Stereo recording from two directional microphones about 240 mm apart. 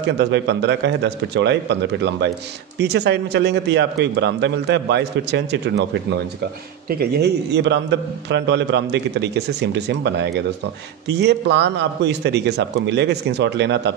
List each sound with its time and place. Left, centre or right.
0.2 s a man's voice: right
6.9 s a man's voice: right